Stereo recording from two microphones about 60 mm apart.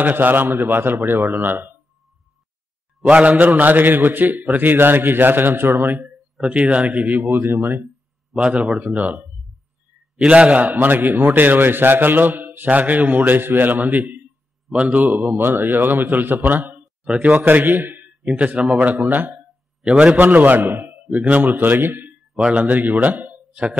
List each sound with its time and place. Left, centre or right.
0.0 s a man's voice: right
3.1 s a man's voice: right
6.7 s a man's voice: right
8.3 s a man's voice: centre; by 16.8 s right
17.0 s a man's voice: centre
17.4 s a man's voice: right
19.8 s a man's voice: centre
20.2 s a man's voice: right